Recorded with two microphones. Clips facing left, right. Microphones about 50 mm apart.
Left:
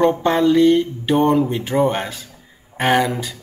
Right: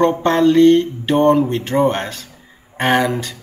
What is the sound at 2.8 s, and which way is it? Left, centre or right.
Speech, centre.